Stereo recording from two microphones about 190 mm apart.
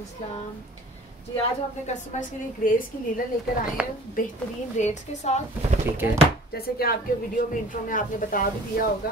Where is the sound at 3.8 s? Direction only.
5° right (ahead or behind).